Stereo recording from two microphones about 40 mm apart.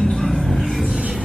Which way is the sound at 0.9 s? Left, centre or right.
Right.